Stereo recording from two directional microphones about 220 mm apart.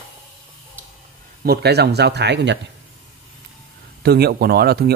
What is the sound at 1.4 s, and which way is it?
Speech, 45° right (ahead or behind).